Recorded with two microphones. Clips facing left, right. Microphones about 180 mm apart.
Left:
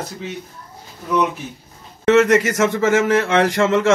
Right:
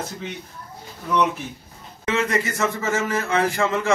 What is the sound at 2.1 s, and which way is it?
A man's voice, 75° left (ahead or behind).